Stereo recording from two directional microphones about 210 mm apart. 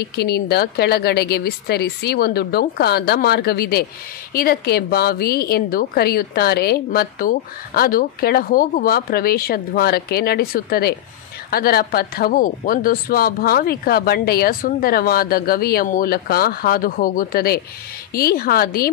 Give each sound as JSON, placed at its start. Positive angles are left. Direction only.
{"t": 0.1, "sound": "a woman's voice", "side_deg": 50}